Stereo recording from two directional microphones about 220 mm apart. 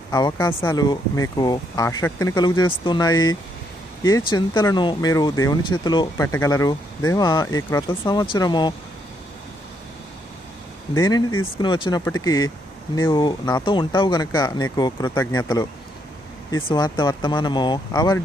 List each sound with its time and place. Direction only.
0.1 s speech: 15° left (ahead or behind)
11.0 s speech: 15° left (ahead or behind)